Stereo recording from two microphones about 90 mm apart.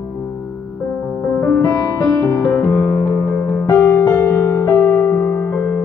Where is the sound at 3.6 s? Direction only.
30° left (ahead or behind).